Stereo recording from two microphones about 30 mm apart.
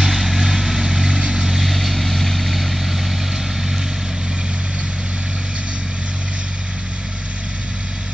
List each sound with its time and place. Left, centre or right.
0.0 s vehicle: centre
0.8 s vehicle: right
1.5 s vehicle: centre